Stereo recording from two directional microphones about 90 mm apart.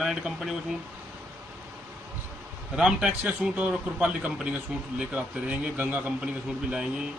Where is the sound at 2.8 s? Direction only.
10° right (ahead or behind).